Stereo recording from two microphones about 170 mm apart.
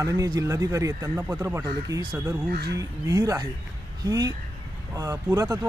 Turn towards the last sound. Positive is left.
turn(degrees=-20)  # may be behind; listen again after turning